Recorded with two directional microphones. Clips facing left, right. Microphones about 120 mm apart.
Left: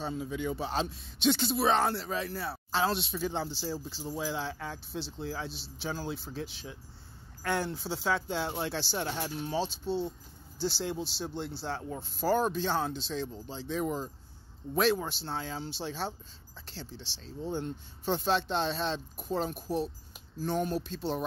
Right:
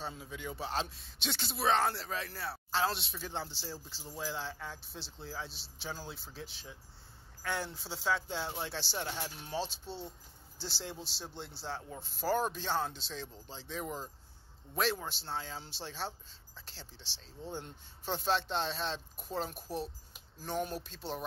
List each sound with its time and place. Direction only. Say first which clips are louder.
0.0 s speech: left 8 dB; centre (ahead or behind)
5.0 s speech: left 4 dB; 80° left
6.0 s speech: left 9 dB; centre (ahead or behind)
7.6 s speech: left 4 dB; centre (ahead or behind)